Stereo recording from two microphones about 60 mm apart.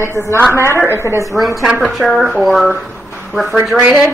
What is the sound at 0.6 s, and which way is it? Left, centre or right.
Speech, right.